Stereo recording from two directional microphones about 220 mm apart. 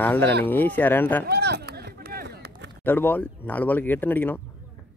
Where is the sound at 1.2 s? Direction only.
45° right (ahead or behind).